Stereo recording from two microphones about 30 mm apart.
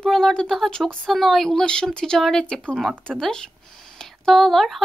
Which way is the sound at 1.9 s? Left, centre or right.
Left.